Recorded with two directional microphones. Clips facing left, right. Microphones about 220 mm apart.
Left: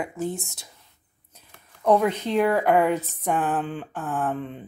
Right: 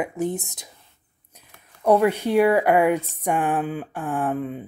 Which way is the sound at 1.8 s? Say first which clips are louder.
Right 2 dB; 10° right (ahead or behind).